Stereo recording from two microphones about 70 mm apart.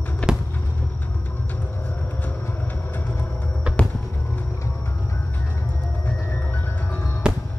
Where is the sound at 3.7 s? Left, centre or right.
Centre.